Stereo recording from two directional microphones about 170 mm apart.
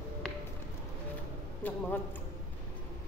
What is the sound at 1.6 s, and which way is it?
Speech, 10° left (ahead or behind).